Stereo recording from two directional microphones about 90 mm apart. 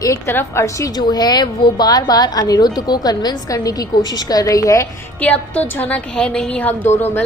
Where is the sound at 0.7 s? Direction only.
45° left (ahead or behind).